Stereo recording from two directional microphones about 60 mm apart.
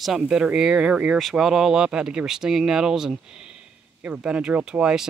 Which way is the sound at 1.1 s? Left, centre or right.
Centre.